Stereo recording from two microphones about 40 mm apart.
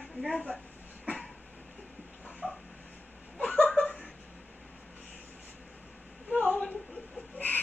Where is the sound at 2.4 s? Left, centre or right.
Right.